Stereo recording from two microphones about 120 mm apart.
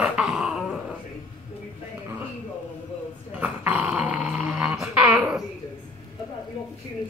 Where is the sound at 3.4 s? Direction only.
10° right (ahead or behind).